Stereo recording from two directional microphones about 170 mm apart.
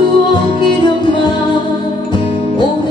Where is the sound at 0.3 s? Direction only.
25° left (ahead or behind).